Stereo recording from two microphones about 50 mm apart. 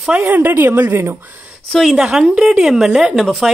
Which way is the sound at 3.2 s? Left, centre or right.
Centre.